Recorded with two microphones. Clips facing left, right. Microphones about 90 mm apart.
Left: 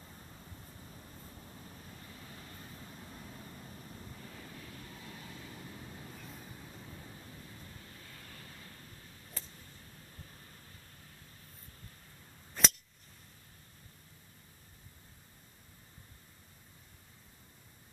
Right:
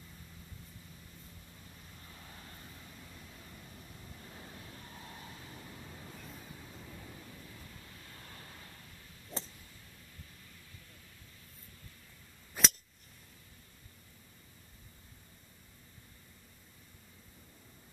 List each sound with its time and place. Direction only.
1.5 s waves: 40° left (ahead or behind)
2.1 s vehicle: 35° right (ahead or behind)
2.4 s vehicle: 35° left (ahead or behind)
4.3 s vehicle: 30° right (ahead or behind)
6.1 s train: centre (ahead or behind)
7.2 s thunder: 30° left (ahead or behind)
8.1 s vehicle: 35° right (ahead or behind)
10.1 s vehicle: 40° left (ahead or behind)
12.6 s a sound: 5° right (ahead or behind)